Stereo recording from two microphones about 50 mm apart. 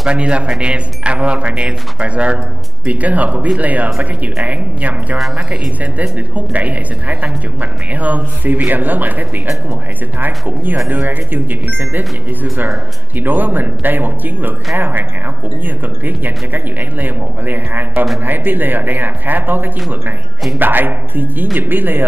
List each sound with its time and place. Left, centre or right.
0.1 s speech: right
10.9 s speech: right
13.2 s speech: right